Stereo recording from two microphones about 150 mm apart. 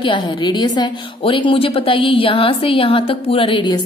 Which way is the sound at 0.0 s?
30° left (ahead or behind).